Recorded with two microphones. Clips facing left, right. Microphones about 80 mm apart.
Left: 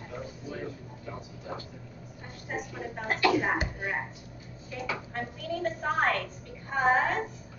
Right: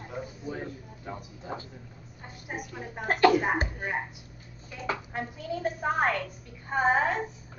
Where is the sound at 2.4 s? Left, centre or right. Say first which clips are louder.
Left 2 dB; centre.